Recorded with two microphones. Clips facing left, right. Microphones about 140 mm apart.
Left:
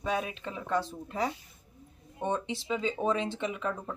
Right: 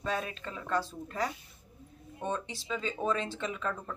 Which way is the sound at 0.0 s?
15° left (ahead or behind).